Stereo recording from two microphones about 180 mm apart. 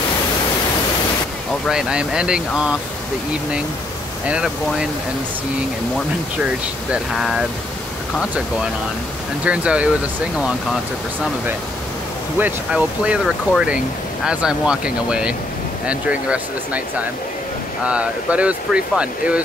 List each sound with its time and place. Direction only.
1.7 s speech: 5° right (ahead or behind)
4.3 s speech: 5° right (ahead or behind)
6.9 s speech: centre (ahead or behind)
9.4 s speech: 5° right (ahead or behind)
12.4 s speech: 10° right (ahead or behind)
17.8 s speech: 5° right (ahead or behind)